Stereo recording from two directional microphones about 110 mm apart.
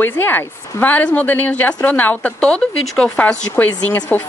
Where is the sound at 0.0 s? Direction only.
20° left (ahead or behind).